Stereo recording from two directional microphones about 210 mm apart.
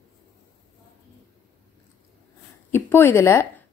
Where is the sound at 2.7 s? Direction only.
10° left (ahead or behind).